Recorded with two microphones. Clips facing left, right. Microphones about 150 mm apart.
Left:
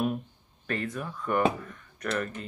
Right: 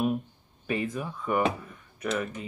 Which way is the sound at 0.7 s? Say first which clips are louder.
Right 2 dB; 10° right (ahead or behind).